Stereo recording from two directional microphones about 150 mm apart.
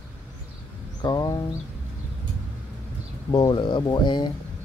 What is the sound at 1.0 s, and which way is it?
Speech, 30° left (ahead or behind).